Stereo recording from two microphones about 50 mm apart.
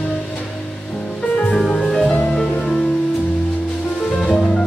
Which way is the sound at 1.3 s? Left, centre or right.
Left.